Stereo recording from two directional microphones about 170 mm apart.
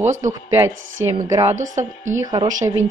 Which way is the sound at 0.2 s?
15° right (ahead or behind).